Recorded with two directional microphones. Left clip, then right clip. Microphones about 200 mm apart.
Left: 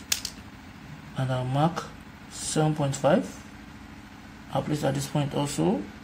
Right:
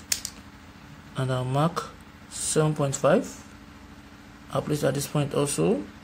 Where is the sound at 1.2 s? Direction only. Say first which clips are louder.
Right 1 dB; 35° right (ahead or behind).